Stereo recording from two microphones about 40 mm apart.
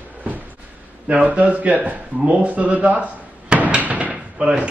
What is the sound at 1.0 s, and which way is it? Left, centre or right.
Speech, right.